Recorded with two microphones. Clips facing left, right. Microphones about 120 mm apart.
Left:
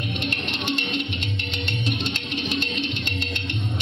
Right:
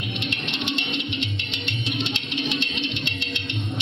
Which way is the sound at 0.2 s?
45° left (ahead or behind).